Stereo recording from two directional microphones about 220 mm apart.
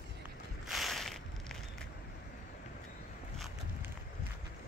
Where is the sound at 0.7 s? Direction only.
Centre (ahead or behind).